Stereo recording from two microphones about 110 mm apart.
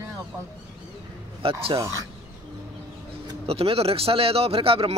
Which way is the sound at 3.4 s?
65° right (ahead or behind).